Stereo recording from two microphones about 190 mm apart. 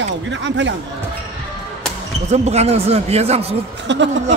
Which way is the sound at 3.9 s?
70° right (ahead or behind).